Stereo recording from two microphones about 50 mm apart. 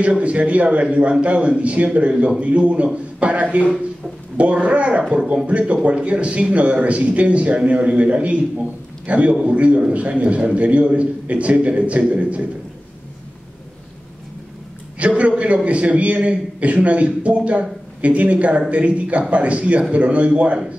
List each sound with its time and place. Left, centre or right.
0.2 s a man's voice: right
5.2 s speech: centre
5.5 s a man's voice: right
15.0 s a man's voice: right